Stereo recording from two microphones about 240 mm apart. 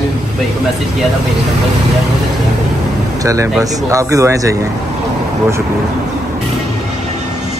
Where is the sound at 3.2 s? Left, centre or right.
Centre.